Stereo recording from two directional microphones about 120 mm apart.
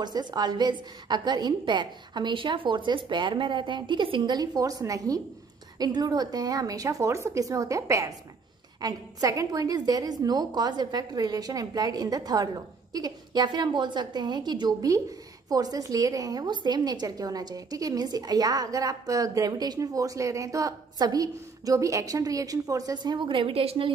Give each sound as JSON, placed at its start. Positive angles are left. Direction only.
{"t": 0.0, "sound": "a woman's voice", "side_deg": -35}